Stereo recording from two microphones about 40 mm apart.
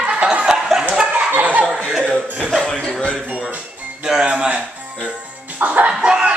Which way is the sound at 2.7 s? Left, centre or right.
Centre.